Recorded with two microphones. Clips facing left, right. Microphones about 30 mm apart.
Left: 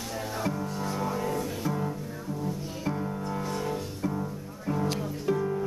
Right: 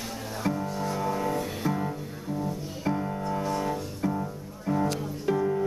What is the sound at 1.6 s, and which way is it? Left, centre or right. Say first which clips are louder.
Music: right 2 dB; right.